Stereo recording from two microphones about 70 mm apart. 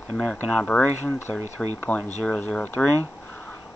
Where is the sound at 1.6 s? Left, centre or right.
Centre.